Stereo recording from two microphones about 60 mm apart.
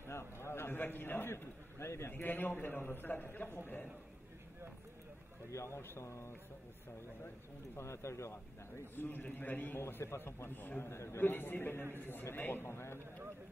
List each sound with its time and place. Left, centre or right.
0.0 s a sound: left
2.1 s a man's voice: left
5.5 s speech: left
7.7 s speech: left
8.9 s a man's voice: left
10.9 s a man's voice: left